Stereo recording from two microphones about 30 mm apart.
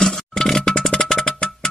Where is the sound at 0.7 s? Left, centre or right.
Centre.